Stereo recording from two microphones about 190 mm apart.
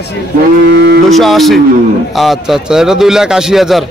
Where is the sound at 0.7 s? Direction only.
65° right (ahead or behind).